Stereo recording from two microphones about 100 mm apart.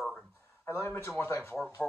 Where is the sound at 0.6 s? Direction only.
25° left (ahead or behind).